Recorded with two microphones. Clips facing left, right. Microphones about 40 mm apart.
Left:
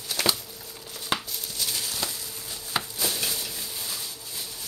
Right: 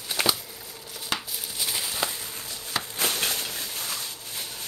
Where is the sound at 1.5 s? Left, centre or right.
Centre.